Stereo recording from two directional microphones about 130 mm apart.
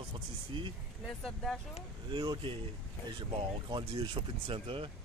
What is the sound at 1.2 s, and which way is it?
Speech, 5° left (ahead or behind).